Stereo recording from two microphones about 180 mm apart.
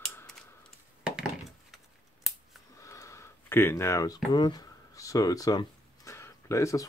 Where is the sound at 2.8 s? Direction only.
15° left (ahead or behind).